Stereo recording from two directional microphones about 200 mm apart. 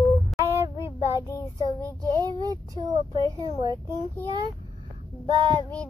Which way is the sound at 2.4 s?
20° right (ahead or behind).